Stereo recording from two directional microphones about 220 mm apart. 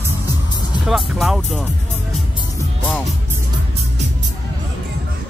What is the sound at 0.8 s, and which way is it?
Speech, centre (ahead or behind).